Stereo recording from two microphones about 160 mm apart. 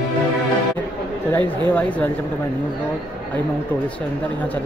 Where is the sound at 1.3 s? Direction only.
10° left (ahead or behind).